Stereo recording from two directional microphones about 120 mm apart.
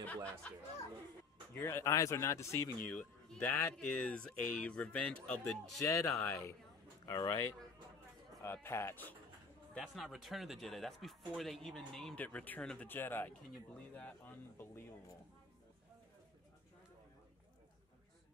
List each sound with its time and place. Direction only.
0.0 s speech: 10° left (ahead or behind)
1.5 s speech: 20° left (ahead or behind)
2.9 s speech: 10° left (ahead or behind)
5.8 s speech: 25° left (ahead or behind)
9.8 s speech: centre (ahead or behind); by 15.1 s 15° left (ahead or behind)